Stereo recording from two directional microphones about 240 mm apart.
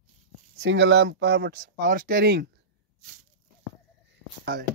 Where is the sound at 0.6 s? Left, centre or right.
Right.